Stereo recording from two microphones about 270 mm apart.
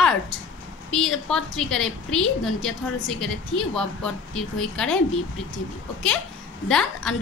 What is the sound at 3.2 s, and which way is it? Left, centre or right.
A woman's voice, centre.